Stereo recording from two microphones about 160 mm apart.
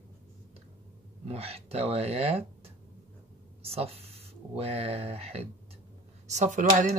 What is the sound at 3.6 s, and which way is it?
Speech, 40° right (ahead or behind).